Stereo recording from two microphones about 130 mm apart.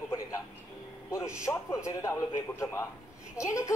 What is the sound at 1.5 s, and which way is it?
Speech, 25° left (ahead or behind).